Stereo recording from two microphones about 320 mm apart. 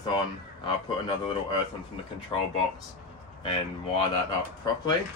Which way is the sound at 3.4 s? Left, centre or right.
Centre.